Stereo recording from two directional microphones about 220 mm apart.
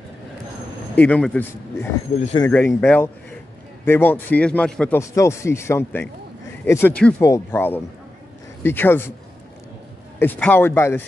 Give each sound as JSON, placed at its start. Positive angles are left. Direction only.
{"t": 0.9, "sound": "a man's voice", "side_deg": 5}
{"t": 2.1, "sound": "speech", "side_deg": 30}
{"t": 2.8, "sound": "a man's voice", "side_deg": 10}
{"t": 10.1, "sound": "a man's voice", "side_deg": 10}